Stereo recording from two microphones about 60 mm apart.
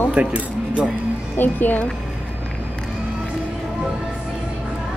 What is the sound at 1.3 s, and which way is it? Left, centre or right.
Speech, left.